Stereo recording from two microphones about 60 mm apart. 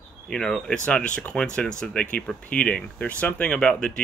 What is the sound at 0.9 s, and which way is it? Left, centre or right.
Speech, left.